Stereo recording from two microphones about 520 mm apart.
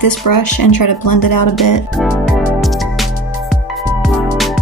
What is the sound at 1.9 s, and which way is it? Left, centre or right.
Music, centre.